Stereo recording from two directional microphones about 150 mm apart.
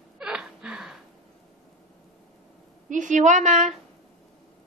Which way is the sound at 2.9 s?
55° right (ahead or behind).